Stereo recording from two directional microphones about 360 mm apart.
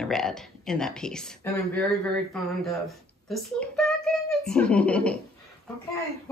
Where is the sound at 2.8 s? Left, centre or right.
Centre.